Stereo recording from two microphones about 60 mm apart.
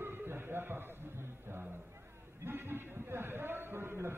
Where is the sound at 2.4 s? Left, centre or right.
Right.